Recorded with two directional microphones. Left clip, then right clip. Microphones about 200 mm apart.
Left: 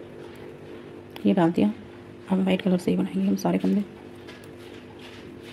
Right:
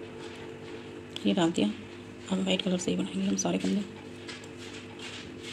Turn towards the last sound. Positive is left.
turn(degrees=50)  # may be behind; listen again after turning